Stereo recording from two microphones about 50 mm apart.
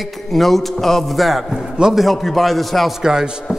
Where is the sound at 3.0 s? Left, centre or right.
Centre.